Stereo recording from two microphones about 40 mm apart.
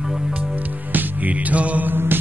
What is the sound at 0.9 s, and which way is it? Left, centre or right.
Music, right.